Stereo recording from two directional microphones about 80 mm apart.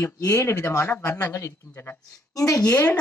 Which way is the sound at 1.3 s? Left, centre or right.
Left.